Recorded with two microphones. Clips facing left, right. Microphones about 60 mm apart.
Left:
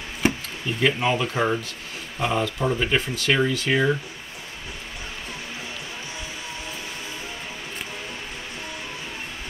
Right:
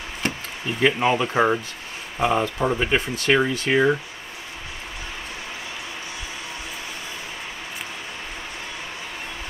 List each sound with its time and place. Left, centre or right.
0.2 s chop: centre
0.8 s speech: centre